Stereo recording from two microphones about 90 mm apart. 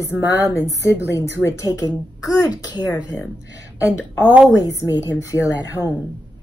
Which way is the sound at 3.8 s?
30° left (ahead or behind).